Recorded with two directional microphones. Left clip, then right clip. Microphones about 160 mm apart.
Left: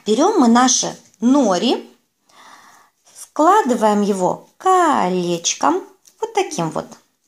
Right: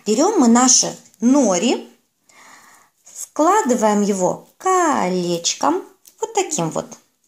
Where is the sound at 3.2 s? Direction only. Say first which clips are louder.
Left 2 dB; centre (ahead or behind).